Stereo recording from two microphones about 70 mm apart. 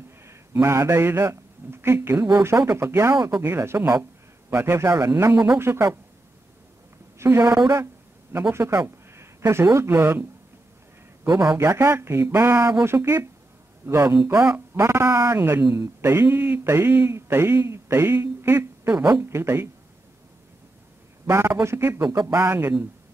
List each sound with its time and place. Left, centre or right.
0.2 s speech: right
7.2 s a woman's voice: right
11.5 s speech: right
14.5 s speech: right
15.6 s speech: right
21.3 s speech: right